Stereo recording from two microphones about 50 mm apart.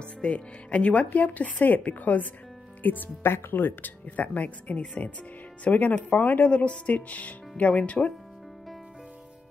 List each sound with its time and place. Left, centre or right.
0.2 s speech: left